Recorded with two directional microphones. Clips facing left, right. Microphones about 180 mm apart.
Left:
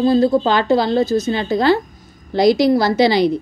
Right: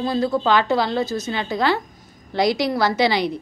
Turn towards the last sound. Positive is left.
turn(degrees=35)  # may be behind; listen again after turning